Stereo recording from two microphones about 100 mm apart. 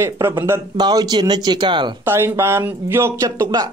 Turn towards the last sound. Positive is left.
turn(degrees=-40)  # may be behind; listen again after turning